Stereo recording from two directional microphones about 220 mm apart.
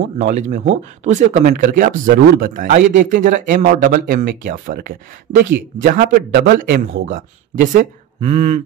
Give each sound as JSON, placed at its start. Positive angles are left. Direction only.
{"t": 0.2, "sound": "a man's voice", "side_deg": -35}